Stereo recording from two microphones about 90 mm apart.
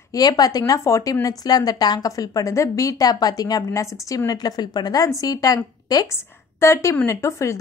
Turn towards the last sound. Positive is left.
turn(degrees=35)  # may be behind; listen again after turning